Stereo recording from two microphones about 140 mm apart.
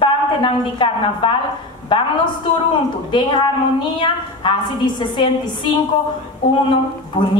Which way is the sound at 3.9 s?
35° left (ahead or behind).